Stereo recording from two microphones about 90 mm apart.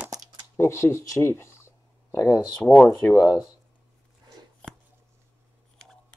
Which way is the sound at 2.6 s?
10° left (ahead or behind).